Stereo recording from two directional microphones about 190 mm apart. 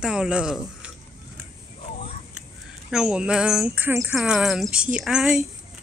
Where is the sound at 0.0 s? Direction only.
5° right (ahead or behind).